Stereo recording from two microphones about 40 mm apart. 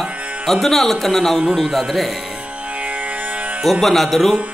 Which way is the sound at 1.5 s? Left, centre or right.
Centre.